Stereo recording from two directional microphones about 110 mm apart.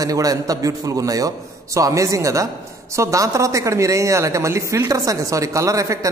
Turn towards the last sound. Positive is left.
turn(degrees=-30)  # may be behind; listen again after turning